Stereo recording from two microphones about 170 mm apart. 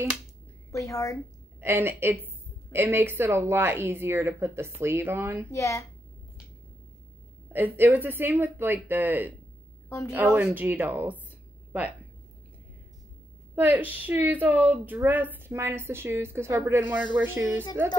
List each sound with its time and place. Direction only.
0.7 s a woman's voice: 20° left (ahead or behind)
1.6 s speech: 15° right (ahead or behind)
5.5 s speech: 15° left (ahead or behind)
7.5 s speech: 10° right (ahead or behind)
9.8 s a woman's voice: 15° left (ahead or behind)
10.3 s speech: 10° right (ahead or behind)
13.6 s speech: 10° right (ahead or behind)